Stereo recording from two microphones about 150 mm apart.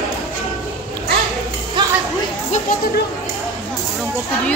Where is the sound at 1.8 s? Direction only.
30° right (ahead or behind).